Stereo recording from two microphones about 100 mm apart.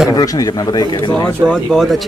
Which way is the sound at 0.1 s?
40° left (ahead or behind).